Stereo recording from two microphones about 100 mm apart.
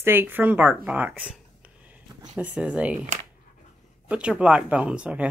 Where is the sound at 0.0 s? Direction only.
20° right (ahead or behind).